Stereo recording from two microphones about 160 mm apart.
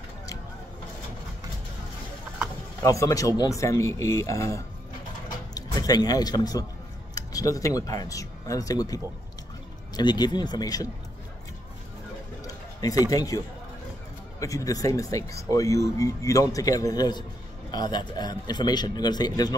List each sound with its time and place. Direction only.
2.8 s a man's voice: 20° left (ahead or behind)
12.4 s a sound: 20° left (ahead or behind)
14.4 s a man's voice: 20° left (ahead or behind)